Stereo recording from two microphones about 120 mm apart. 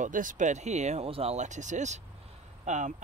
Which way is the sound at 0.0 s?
90° right.